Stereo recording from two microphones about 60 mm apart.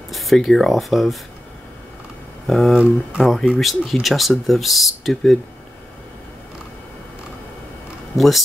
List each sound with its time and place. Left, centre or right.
0.1 s speech: centre
2.4 s speech: centre
2.7 s speech: centre
3.5 s speech: centre
8.2 s speech: centre